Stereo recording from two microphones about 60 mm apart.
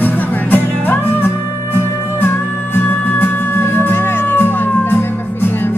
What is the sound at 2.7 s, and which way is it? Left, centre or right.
Music, left.